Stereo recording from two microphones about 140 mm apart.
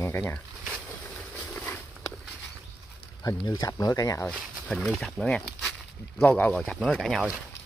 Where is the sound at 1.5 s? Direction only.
10° left (ahead or behind).